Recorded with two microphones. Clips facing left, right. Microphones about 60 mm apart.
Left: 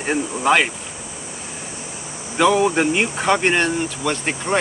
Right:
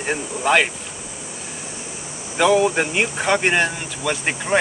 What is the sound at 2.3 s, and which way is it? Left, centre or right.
Speech, centre.